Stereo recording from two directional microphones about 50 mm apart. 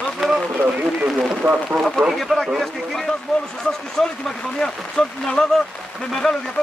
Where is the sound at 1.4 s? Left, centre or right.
Right.